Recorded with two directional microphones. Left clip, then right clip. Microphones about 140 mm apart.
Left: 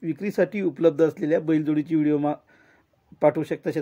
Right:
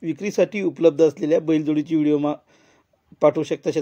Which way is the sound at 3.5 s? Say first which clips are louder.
Right 4 dB; 40° right (ahead or behind).